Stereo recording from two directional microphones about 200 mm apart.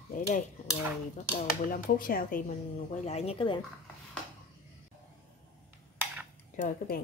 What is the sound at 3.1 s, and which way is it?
Speech, 30° left (ahead or behind).